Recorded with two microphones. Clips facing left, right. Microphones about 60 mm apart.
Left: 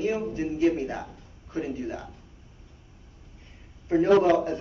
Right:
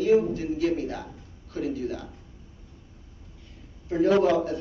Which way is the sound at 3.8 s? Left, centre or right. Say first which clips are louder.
Left 1 dB; left.